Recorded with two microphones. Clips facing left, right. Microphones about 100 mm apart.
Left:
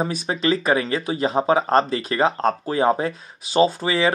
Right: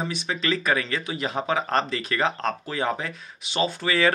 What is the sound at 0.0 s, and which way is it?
Speech, 40° left (ahead or behind).